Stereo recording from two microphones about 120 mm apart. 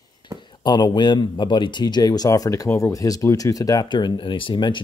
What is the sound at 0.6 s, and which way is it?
Speech, 40° left (ahead or behind).